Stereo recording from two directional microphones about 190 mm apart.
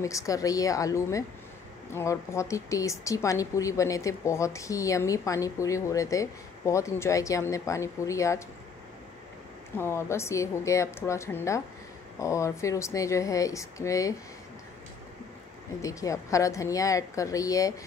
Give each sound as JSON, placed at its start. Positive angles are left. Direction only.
{"t": 0.0, "sound": "speech", "side_deg": 15}
{"t": 9.8, "sound": "speech", "side_deg": 15}
{"t": 15.8, "sound": "speech", "side_deg": 15}